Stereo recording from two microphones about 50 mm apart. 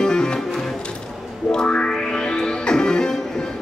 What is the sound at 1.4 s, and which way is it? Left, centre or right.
Music, centre.